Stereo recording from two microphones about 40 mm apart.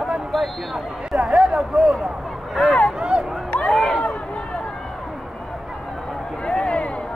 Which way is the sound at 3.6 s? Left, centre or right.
Centre.